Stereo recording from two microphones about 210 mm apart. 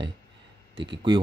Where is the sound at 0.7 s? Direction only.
55° right (ahead or behind).